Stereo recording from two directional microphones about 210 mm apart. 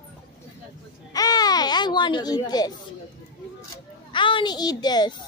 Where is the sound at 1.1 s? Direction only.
20° left (ahead or behind).